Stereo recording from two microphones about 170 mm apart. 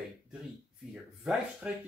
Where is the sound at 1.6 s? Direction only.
5° right (ahead or behind).